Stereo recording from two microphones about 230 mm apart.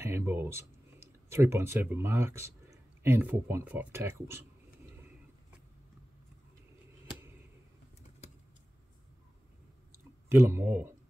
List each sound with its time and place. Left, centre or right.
0.0 s speech: centre
10.3 s speech: centre